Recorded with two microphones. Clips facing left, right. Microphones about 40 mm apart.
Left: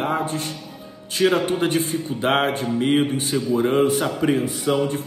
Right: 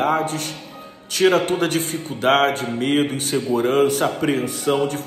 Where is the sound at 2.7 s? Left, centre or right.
Centre.